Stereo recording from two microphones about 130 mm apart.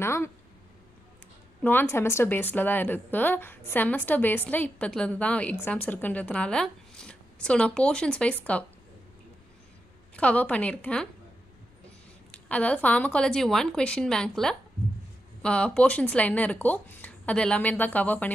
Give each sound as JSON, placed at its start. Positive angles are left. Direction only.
{"t": 0.0, "sound": "speech", "side_deg": 20}
{"t": 1.6, "sound": "a woman's voice", "side_deg": 15}
{"t": 10.1, "sound": "a woman's voice", "side_deg": 10}
{"t": 12.4, "sound": "a woman's voice", "side_deg": 10}